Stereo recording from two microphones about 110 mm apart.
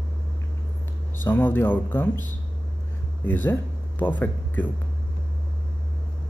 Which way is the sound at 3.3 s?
15° left (ahead or behind).